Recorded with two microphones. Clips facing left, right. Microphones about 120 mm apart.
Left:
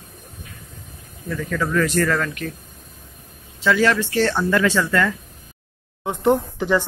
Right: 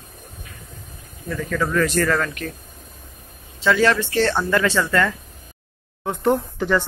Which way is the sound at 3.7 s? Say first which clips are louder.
Even; 5° left (ahead or behind).